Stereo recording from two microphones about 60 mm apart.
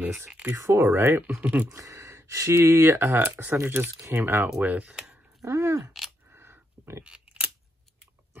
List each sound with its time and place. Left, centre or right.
0.6 s speech: right
0.8 s speech: right
1.4 s speech: right
1.7 s gasp: right
2.6 s speech: right
4.6 s speech: right
4.9 s a sound: centre
5.4 s speech: right
6.3 s a sound: right
7.0 s a sound: centre